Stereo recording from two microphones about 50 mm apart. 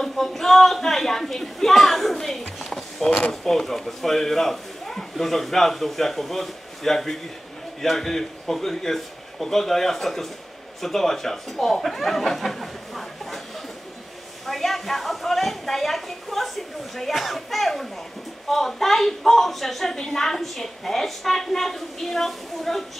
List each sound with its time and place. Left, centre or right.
0.0 s a woman's voice: centre
3.0 s speech: centre
3.4 s a woman's voice: centre
14.4 s a woman's voice: centre